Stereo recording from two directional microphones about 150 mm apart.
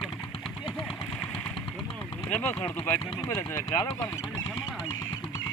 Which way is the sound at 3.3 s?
20° left (ahead or behind).